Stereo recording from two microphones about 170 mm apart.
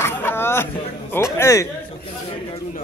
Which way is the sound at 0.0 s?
15° left (ahead or behind).